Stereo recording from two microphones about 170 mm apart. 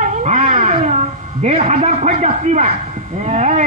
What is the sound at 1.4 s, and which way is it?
A man's voice, 40° right (ahead or behind).